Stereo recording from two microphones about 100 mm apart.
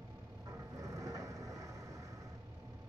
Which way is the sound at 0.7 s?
35° right (ahead or behind).